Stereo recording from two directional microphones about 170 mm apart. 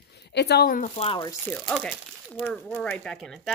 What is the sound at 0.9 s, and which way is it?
Speech, 30° left (ahead or behind).